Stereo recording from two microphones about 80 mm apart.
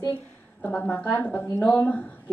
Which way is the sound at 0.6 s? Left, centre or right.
Centre.